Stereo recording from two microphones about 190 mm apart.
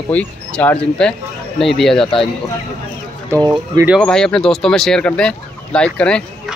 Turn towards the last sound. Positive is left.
turn(degrees=5)  # may be behind; listen again after turning